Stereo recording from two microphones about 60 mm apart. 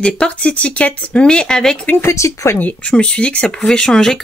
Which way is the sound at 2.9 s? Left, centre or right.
Centre.